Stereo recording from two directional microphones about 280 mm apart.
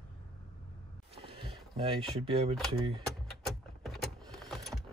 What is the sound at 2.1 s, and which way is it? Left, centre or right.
Speech, right.